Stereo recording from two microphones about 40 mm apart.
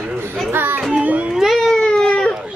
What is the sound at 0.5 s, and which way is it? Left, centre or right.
Children playing, right.